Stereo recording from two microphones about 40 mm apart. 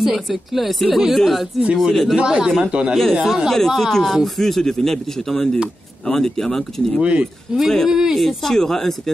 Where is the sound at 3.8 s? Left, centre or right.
Centre.